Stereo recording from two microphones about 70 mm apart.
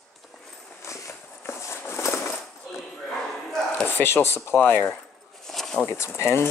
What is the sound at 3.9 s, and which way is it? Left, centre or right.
Speech, left.